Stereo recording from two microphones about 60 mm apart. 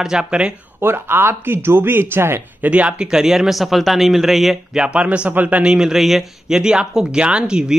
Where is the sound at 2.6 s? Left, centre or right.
Right.